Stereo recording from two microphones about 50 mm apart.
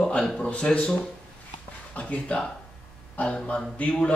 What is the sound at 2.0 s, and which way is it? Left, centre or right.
A man's voice, left.